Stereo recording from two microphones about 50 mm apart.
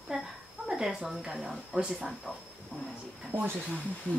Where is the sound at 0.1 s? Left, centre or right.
Centre.